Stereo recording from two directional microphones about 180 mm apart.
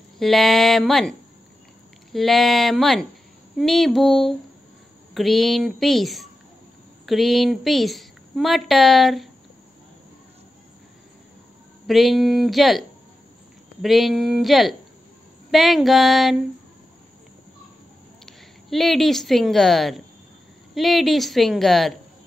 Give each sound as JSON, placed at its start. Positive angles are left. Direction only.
{"t": 0.2, "sound": "a woman's voice", "side_deg": 0}
{"t": 2.1, "sound": "a woman's voice", "side_deg": 0}
{"t": 11.9, "sound": "a woman's voice", "side_deg": 0}
{"t": 13.8, "sound": "a woman's voice", "side_deg": 0}
{"t": 18.2, "sound": "a woman's voice", "side_deg": 0}